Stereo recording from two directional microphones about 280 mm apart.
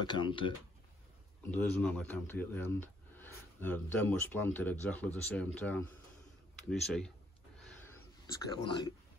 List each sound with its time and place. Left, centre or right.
0.0 s speech: centre
1.5 s speech: centre
7.7 s a sound: centre